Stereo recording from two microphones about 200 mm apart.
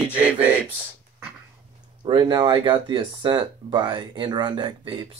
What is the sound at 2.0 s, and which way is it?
Speech, 20° right (ahead or behind).